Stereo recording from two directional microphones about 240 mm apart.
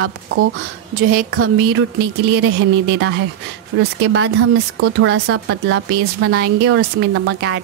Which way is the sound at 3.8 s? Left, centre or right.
Right.